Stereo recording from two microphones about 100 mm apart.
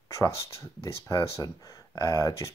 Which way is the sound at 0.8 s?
30° left (ahead or behind).